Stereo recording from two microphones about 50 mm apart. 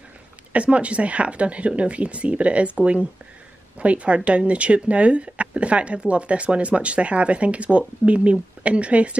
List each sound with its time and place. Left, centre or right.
0.5 s speech: right